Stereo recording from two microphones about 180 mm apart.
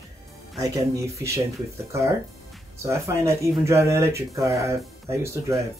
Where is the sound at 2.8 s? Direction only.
15° right (ahead or behind).